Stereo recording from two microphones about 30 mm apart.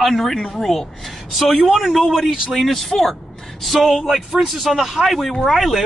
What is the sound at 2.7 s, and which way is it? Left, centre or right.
Speech, centre.